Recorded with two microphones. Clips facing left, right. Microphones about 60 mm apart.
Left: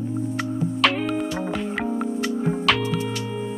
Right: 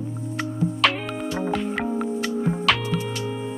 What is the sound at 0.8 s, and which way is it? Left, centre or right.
Music, centre.